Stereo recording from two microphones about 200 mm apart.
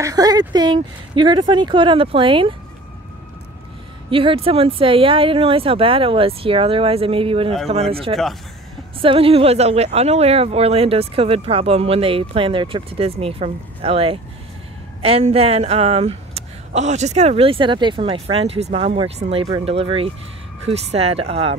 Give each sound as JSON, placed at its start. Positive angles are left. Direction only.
{"t": 0.0, "sound": "speech", "side_deg": -20}
{"t": 4.1, "sound": "speech", "side_deg": -25}